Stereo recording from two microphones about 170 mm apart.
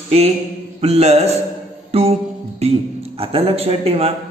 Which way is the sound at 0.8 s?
40° right (ahead or behind).